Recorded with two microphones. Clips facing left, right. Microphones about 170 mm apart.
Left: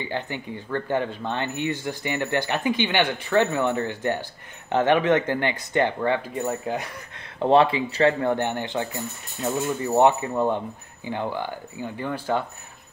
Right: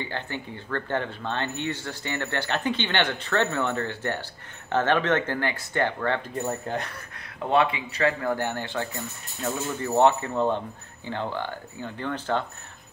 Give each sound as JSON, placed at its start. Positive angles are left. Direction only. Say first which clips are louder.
{"t": 0.0, "sound": "speech", "louder": "left 3 dB", "side_deg": 15}
{"t": 7.3, "sound": "a man's voice", "louder": "left 5 dB", "side_deg": 30}